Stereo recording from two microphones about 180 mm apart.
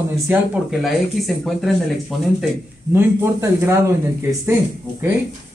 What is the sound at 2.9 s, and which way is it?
Speech, 15° right (ahead or behind).